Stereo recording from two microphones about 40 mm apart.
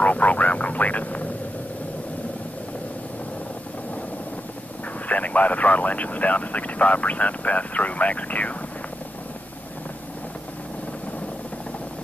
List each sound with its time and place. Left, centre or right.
0.0 s speech: left
5.0 s speech: left